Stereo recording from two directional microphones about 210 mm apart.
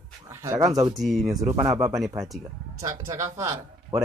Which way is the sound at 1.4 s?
15° right (ahead or behind).